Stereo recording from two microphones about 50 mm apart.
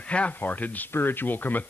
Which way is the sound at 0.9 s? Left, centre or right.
Left.